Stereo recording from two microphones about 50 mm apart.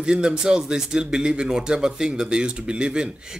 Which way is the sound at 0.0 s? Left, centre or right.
Centre.